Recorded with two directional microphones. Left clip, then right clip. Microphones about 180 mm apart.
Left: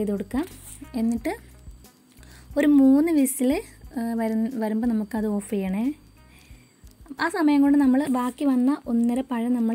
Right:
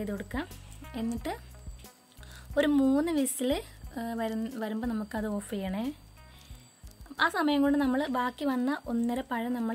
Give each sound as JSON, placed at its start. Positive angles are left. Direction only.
{"t": 0.2, "sound": "speech", "side_deg": 20}
{"t": 2.3, "sound": "music", "side_deg": 10}
{"t": 2.8, "sound": "a woman's voice", "side_deg": 10}
{"t": 7.2, "sound": "a woman's voice", "side_deg": 15}